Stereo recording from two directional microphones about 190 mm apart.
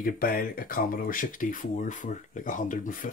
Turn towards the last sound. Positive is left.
turn(degrees=45)  # may be behind; listen again after turning